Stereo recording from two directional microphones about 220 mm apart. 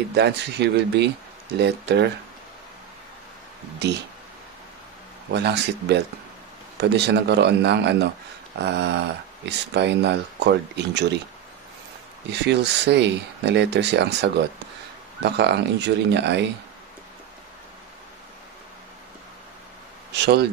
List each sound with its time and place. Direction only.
0.1 s speech: 50° right (ahead or behind)
3.8 s speech: 50° right (ahead or behind)
5.3 s speech: 50° right (ahead or behind)
12.3 s speech: 50° right (ahead or behind)
15.2 s speech: 50° right (ahead or behind)
20.1 s speech: 50° right (ahead or behind)